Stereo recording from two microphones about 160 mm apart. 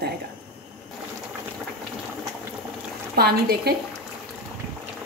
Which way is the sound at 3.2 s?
75° right (ahead or behind).